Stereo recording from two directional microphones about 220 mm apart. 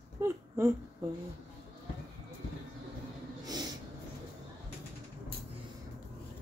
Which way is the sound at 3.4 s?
20° right (ahead or behind).